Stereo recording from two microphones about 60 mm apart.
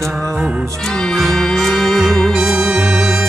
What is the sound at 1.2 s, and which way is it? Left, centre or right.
Music, centre.